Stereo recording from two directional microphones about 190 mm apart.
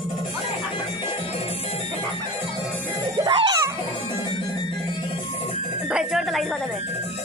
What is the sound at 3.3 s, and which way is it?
Music, 20° right (ahead or behind).